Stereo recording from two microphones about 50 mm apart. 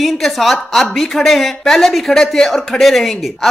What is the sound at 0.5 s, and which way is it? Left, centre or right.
Speech, centre.